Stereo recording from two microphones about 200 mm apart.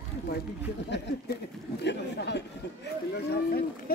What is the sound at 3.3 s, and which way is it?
Speech, 50° left (ahead or behind).